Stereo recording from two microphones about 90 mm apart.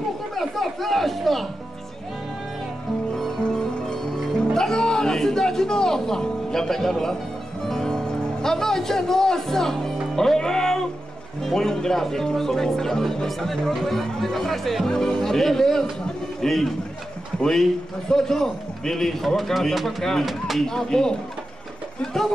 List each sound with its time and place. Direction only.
0.4 s chatter: centre (ahead or behind)
3.2 s music: 10° left (ahead or behind)
11.4 s a man's voice: 5° left (ahead or behind)